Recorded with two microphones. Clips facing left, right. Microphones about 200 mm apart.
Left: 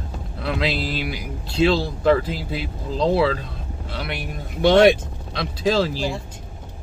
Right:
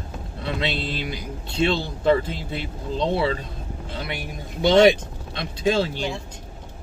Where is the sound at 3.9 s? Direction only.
70° left (ahead or behind).